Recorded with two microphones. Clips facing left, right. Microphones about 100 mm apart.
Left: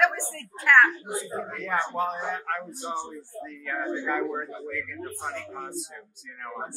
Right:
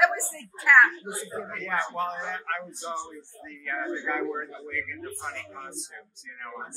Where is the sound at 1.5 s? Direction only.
10° left (ahead or behind).